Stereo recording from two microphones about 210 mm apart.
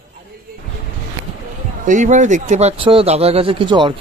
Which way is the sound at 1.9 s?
35° right (ahead or behind).